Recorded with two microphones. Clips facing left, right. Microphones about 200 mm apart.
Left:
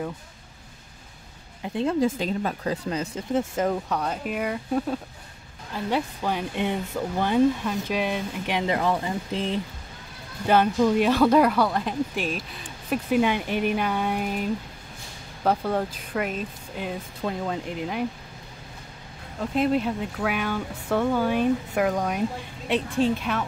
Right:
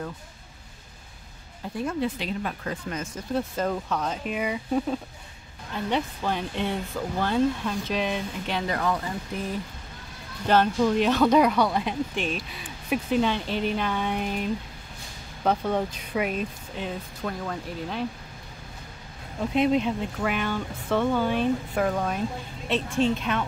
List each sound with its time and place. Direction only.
1.6 s speech: 25° left (ahead or behind)
2.1 s speech: 40° left (ahead or behind)
3.2 s speech: 20° left (ahead or behind); by 4.9 s 5° right (ahead or behind)
5.9 s speech: 10° left (ahead or behind); by 9.6 s 25° left (ahead or behind)
10.4 s speech: 10° left (ahead or behind)
13.1 s speech: 10° left (ahead or behind)
17.2 s speech: 20° left (ahead or behind)
19.5 s speech: centre (ahead or behind)